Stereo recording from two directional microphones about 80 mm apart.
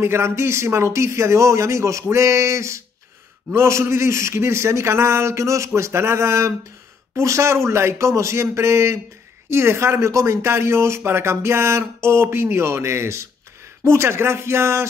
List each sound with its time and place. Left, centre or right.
0.0 s speech: right